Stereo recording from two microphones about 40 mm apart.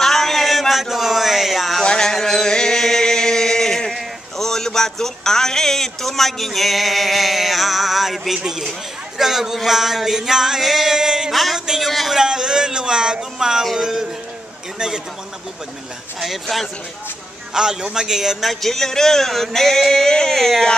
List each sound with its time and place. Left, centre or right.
0.0 s a sound: centre
1.9 s a sound: centre
3.9 s a man's voice: centre
11.0 s a man's voice: centre
11.3 s speech: centre
11.8 s a sound: centre
12.2 s a man's voice: centre
16.2 s speech: centre
17.6 s a man's voice: centre
18.5 s speech: centre